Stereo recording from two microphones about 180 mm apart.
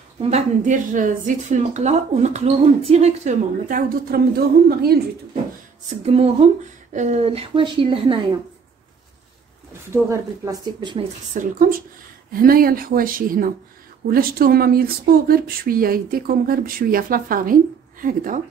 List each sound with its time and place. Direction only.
0.2 s a woman's voice: 40° right (ahead or behind)
6.0 s a woman's voice: 35° right (ahead or behind)
9.8 s speech: 15° right (ahead or behind)
11.3 s speech: 50° right (ahead or behind)